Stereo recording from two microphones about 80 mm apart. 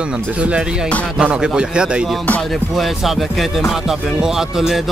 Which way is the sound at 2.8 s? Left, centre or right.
Centre.